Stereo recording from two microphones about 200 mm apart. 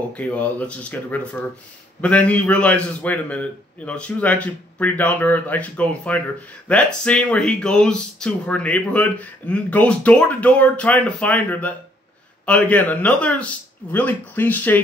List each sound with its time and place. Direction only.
0.1 s speech: 5° left (ahead or behind)